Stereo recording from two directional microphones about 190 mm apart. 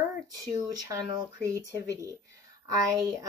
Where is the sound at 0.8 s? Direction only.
20° right (ahead or behind).